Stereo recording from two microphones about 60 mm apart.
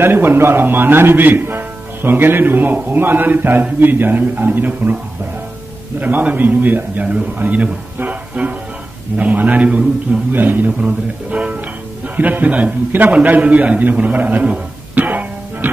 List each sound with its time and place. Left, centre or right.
0.0 s speech: right
5.9 s a man's voice: right
10.3 s speech: right
10.8 s a man's voice: right